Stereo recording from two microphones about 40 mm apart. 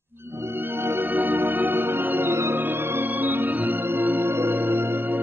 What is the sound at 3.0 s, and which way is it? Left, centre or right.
Organ, right.